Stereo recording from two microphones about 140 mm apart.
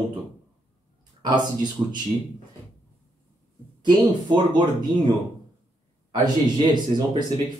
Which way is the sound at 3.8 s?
35° right (ahead or behind).